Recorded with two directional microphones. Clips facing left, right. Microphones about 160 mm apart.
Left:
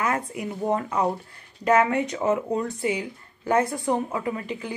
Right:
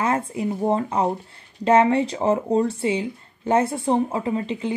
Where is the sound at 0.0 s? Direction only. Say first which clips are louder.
Right 4 dB; 30° right (ahead or behind).